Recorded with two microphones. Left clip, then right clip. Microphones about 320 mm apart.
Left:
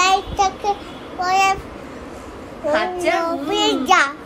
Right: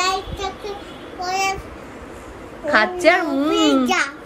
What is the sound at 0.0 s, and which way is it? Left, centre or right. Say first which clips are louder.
Child singing: left 6 dB; centre.